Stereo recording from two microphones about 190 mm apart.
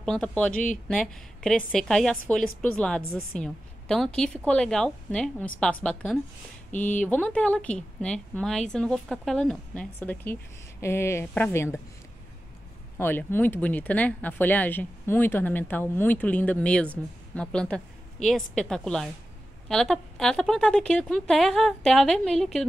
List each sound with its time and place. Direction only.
0.0 s a woman's voice: 5° left (ahead or behind)
6.7 s speech: 40° left (ahead or behind)
7.0 s speech: 5° left (ahead or behind)
12.9 s a woman's voice: 10° left (ahead or behind)